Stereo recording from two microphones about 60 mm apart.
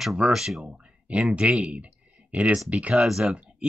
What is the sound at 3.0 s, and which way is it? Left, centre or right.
Speech, centre.